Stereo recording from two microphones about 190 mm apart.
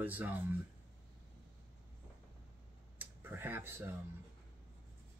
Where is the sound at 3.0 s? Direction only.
10° right (ahead or behind).